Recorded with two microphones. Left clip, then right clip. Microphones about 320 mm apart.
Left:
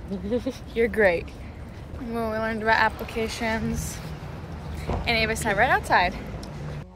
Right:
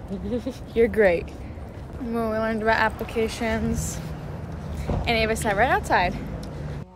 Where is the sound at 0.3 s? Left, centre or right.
Centre.